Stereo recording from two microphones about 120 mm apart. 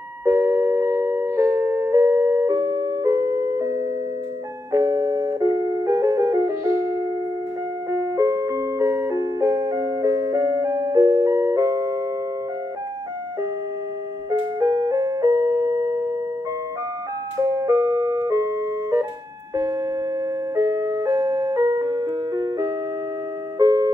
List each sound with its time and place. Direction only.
0.2 s music: 25° right (ahead or behind)
14.6 s music: 30° right (ahead or behind)
17.4 s ice cream truck: 30° right (ahead or behind)
19.5 s a sound: 30° right (ahead or behind)
20.5 s music: 25° right (ahead or behind)